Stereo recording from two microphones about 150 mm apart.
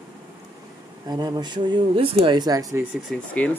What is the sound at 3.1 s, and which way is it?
Speech, centre (ahead or behind).